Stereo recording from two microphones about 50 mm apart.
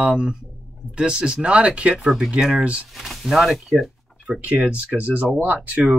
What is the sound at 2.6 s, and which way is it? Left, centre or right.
Speech, right.